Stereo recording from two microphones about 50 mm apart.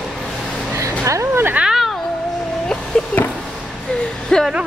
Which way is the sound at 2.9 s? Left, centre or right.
Centre.